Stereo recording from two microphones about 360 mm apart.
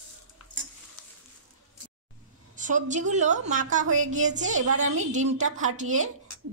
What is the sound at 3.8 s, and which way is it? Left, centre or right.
Speech, right.